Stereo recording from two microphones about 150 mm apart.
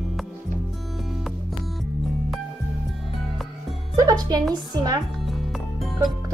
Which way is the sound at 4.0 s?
25° right (ahead or behind).